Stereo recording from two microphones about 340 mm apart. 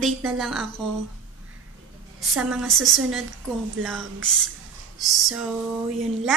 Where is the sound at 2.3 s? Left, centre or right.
Centre.